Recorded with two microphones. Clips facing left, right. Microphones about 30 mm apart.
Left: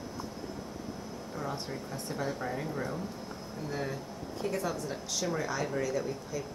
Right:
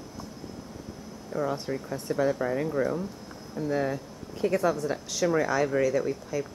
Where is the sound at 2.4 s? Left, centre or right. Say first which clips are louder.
Right 7 dB; centre.